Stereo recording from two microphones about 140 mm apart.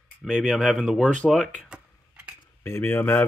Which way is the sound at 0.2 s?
5° left (ahead or behind).